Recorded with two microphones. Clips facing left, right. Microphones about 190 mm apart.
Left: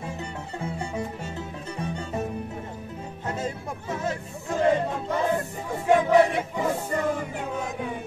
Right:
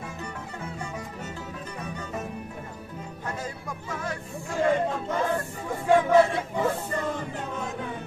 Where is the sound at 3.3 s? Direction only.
25° left (ahead or behind).